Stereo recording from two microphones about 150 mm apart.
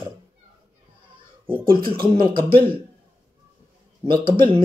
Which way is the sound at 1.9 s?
30° right (ahead or behind).